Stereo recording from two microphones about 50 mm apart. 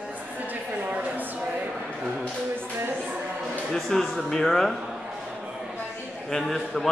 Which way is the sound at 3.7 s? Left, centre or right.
Centre.